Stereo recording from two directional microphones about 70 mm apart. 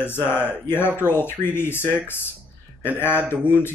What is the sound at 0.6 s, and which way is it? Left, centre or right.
Speech, left.